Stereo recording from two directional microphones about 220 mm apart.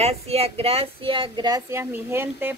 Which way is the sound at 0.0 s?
30° right (ahead or behind).